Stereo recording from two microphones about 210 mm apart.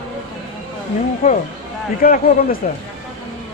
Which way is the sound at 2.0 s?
40° left (ahead or behind).